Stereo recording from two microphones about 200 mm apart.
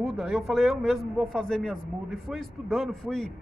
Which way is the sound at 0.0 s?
Centre (ahead or behind).